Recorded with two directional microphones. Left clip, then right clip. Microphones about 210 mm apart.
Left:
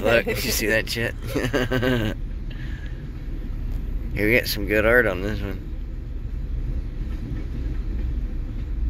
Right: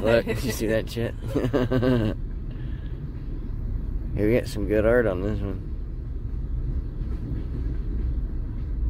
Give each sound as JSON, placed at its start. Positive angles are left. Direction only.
{"t": 0.0, "sound": "speech", "side_deg": -20}
{"t": 4.1, "sound": "speech", "side_deg": -15}